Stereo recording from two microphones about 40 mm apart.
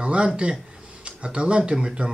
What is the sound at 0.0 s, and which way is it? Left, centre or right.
Speech, right.